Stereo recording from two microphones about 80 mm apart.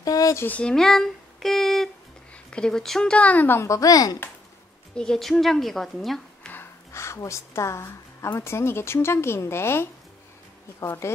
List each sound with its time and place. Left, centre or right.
0.0 s a sound: left
0.5 s speech: centre
3.5 s a woman's voice: left
4.9 s a woman's voice: centre
6.4 s a sound: left
8.4 s speech: left